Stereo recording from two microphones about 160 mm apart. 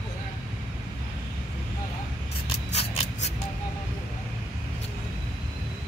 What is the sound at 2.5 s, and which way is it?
Scissors, 40° left (ahead or behind).